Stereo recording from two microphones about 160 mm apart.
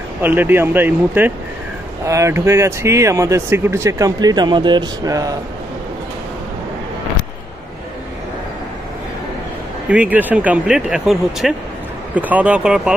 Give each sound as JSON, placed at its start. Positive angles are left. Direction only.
{"t": 0.2, "sound": "speech", "side_deg": -10}
{"t": 9.8, "sound": "speech", "side_deg": -10}